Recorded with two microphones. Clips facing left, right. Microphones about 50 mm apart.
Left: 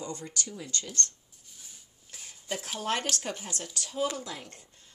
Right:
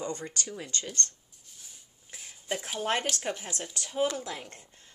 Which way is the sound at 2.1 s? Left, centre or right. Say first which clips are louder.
Right 2 dB; centre.